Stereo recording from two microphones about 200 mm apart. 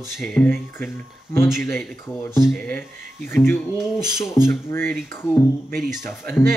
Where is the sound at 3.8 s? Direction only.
Centre (ahead or behind).